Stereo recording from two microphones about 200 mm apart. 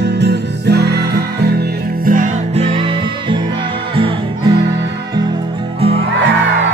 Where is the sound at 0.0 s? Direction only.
55° right (ahead or behind); by 4.6 s 25° right (ahead or behind).